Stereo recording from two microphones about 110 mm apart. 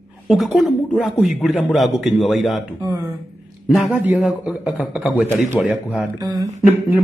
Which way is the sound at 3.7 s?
5° right (ahead or behind).